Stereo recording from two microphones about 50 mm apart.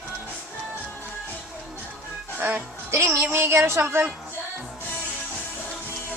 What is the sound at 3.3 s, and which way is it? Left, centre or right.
Speech, right.